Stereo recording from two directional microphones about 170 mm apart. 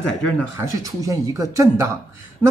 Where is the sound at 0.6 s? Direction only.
20° right (ahead or behind).